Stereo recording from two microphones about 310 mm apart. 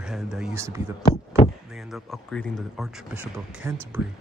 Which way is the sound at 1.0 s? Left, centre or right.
Centre.